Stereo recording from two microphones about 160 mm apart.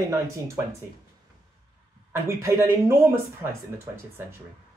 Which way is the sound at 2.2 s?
15° right (ahead or behind).